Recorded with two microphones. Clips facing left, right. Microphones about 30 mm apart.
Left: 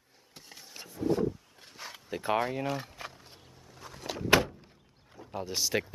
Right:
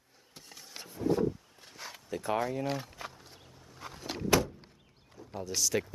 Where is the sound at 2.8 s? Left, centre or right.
Centre.